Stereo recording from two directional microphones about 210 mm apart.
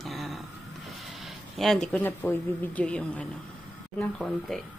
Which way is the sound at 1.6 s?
Centre (ahead or behind).